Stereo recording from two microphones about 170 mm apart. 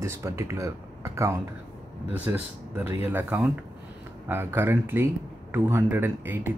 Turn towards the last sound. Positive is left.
turn(degrees=-15)  # may be behind; listen again after turning